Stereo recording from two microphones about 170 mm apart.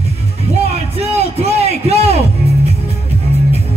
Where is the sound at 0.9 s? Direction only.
35° right (ahead or behind).